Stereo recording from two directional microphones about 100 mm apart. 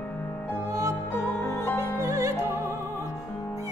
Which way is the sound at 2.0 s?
35° right (ahead or behind).